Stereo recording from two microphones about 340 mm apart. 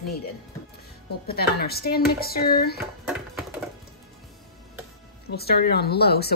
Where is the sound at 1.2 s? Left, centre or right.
Left.